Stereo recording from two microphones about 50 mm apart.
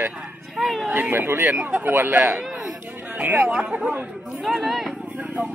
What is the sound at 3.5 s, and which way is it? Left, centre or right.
Speech, centre.